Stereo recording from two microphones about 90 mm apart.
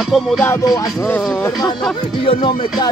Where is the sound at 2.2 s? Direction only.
75° left (ahead or behind).